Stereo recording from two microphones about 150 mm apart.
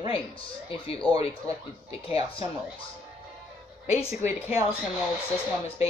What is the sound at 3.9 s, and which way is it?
Speech, 50° left (ahead or behind).